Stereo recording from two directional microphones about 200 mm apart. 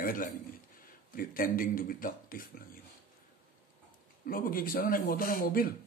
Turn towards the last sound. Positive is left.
turn(degrees=45)  # may be behind; listen again after turning